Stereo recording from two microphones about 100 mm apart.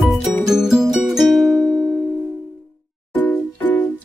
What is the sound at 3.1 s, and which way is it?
Music, 20° left (ahead or behind).